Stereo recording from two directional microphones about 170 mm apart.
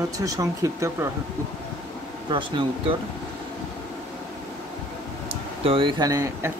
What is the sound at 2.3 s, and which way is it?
Speech, 30° right (ahead or behind).